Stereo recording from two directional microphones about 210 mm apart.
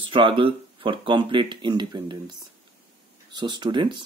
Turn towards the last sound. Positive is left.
turn(degrees=-20)  # may be behind; listen again after turning